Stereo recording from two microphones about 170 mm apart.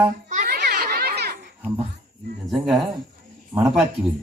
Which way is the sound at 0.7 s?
60° right (ahead or behind).